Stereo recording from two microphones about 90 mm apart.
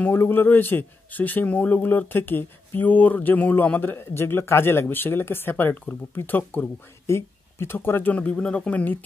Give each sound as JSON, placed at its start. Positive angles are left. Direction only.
{"t": 0.0, "sound": "speech", "side_deg": 25}